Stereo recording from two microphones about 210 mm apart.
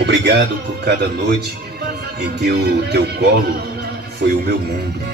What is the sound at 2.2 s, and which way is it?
Speech, 50° right (ahead or behind).